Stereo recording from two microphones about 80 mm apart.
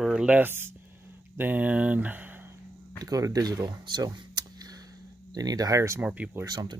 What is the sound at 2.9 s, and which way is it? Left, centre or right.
Speech, right.